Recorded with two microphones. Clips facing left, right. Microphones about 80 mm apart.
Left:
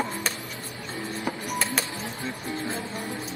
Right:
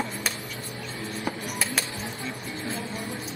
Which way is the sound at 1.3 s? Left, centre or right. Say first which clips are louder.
Left 2 dB; centre.